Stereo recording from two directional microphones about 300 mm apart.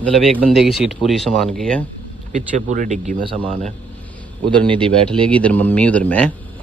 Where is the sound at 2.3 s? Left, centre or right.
Right.